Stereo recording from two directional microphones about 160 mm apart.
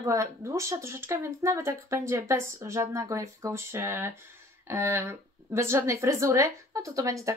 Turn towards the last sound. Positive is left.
turn(degrees=-20)  # may be behind; listen again after turning